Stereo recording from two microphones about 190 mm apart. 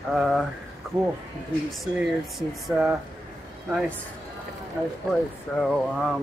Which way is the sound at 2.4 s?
5° right (ahead or behind).